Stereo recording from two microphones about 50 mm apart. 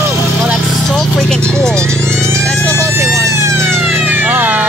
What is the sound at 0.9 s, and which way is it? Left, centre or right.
Speech, centre.